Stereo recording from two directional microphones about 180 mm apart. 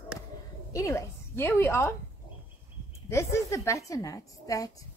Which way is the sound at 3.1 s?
15° left (ahead or behind).